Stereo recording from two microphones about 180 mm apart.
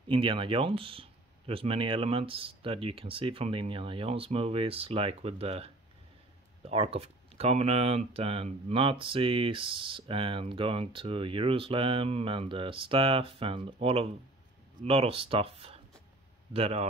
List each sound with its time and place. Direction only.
0.1 s speech: 30° right (ahead or behind)